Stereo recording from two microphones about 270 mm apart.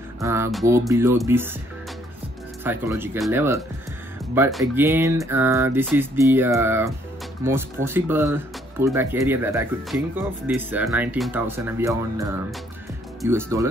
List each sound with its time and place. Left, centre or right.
0.2 s speech: centre
2.6 s speech: centre